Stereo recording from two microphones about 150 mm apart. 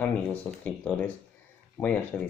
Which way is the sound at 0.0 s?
10° left (ahead or behind).